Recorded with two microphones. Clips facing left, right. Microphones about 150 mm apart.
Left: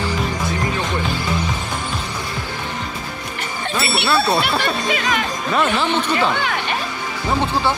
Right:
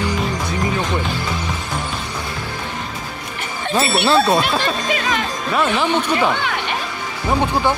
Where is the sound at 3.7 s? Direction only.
45° right (ahead or behind).